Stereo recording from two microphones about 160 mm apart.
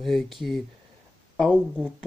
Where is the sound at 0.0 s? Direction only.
Centre (ahead or behind).